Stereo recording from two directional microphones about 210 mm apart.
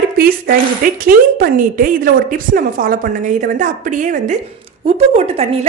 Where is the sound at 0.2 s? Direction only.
45° right (ahead or behind).